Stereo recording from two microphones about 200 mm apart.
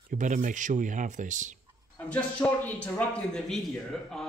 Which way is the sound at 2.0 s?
5° left (ahead or behind).